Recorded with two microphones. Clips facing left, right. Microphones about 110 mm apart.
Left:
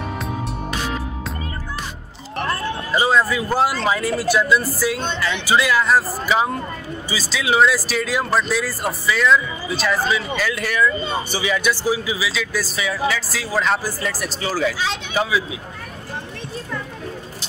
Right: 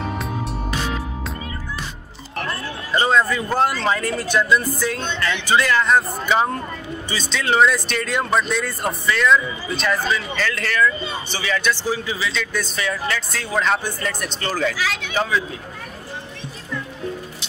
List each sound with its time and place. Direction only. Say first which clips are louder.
2.9 s speech: even; 5° left (ahead or behind)
14.8 s speech: left 1 dB; 25° left (ahead or behind)